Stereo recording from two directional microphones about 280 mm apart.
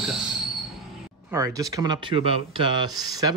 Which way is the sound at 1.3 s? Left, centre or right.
Centre.